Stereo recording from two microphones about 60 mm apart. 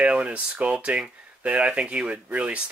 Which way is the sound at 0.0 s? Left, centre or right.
Right.